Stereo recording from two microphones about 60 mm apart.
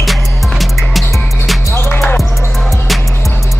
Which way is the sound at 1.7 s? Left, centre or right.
Left.